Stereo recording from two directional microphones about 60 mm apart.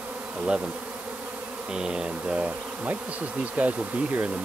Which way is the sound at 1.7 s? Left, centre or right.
Centre.